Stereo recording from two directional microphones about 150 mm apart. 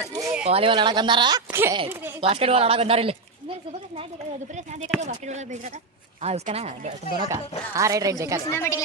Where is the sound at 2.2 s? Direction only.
40° right (ahead or behind).